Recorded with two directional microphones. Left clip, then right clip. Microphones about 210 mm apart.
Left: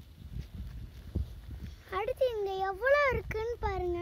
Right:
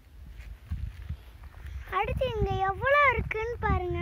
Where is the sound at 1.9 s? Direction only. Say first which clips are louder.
Right 2 dB; 50° left (ahead or behind).